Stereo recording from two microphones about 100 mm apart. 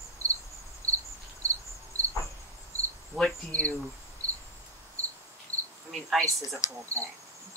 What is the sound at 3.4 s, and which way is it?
Speech, 15° left (ahead or behind).